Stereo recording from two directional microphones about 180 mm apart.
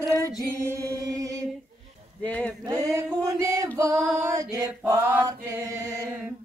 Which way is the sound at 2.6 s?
15° right (ahead or behind).